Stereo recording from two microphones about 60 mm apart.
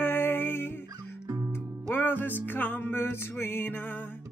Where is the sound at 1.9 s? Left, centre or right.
Left.